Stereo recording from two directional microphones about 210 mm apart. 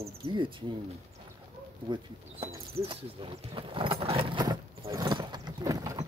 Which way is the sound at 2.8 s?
25° right (ahead or behind).